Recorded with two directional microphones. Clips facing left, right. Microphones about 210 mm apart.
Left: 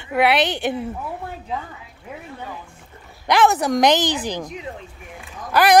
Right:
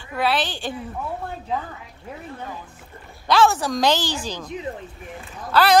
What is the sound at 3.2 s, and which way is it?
Speech, 20° left (ahead or behind).